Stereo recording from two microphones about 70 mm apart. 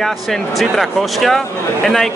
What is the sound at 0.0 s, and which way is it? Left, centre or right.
Speech, centre.